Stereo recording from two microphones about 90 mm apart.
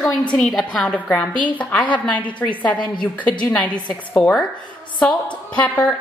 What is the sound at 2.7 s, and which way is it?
Speech, 60° left (ahead or behind).